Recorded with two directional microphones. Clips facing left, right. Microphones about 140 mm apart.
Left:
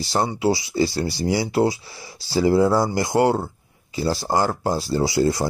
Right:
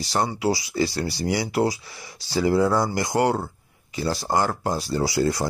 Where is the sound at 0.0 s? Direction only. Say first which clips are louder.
Left 2 dB; 30° left (ahead or behind).